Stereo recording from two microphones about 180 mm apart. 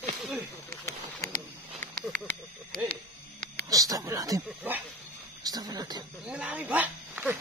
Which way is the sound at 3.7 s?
20° right (ahead or behind).